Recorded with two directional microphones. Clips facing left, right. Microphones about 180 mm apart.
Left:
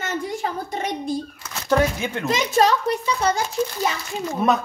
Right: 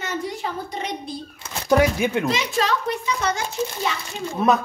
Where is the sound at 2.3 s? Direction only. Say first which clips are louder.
Left 4 dB; 40° left (ahead or behind).